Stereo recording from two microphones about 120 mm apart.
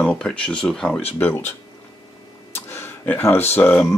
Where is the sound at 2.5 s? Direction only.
20° left (ahead or behind).